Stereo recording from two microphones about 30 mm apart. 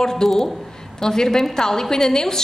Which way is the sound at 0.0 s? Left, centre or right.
Centre.